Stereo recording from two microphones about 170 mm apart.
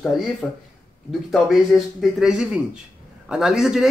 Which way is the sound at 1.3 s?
Centre (ahead or behind).